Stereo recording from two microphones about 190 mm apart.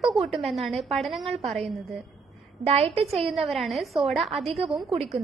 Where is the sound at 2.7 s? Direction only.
30° right (ahead or behind).